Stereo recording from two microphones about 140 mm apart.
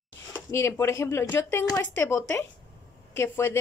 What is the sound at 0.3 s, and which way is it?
A woman's voice, 20° left (ahead or behind).